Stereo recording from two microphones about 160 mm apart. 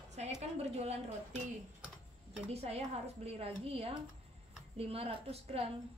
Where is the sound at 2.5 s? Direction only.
40° right (ahead or behind).